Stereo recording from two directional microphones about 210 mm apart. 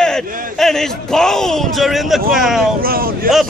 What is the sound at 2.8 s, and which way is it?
Speech, 45° right (ahead or behind).